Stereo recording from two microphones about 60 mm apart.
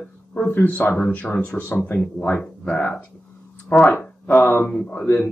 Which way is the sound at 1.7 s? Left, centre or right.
Left.